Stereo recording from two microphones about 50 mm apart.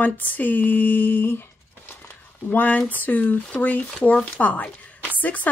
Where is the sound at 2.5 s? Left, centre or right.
Left.